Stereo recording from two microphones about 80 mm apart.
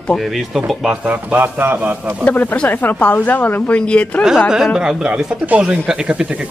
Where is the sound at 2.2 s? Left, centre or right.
Left.